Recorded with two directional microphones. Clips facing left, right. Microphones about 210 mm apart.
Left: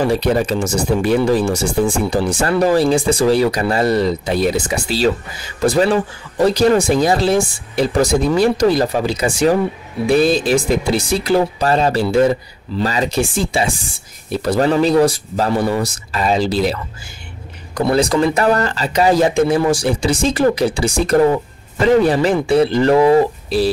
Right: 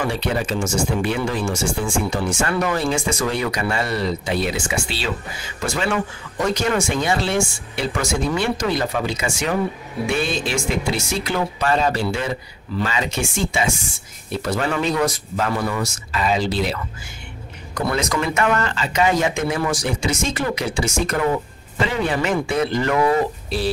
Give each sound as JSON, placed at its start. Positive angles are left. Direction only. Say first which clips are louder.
{"t": 0.0, "sound": "speech", "louder": "left 7 dB", "side_deg": 40}
{"t": 17.7, "sound": "speech", "louder": "left 7 dB", "side_deg": 30}